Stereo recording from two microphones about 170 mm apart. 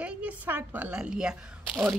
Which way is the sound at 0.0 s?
10° right (ahead or behind).